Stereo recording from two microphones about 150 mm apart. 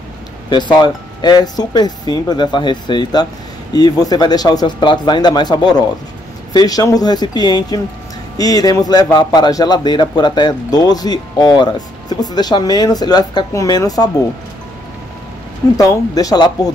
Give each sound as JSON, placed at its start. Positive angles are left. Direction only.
{"t": 0.5, "sound": "a man's voice", "side_deg": 30}
{"t": 15.8, "sound": "a man's voice", "side_deg": 25}